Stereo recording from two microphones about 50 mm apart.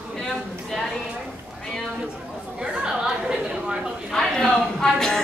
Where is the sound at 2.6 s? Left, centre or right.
Centre.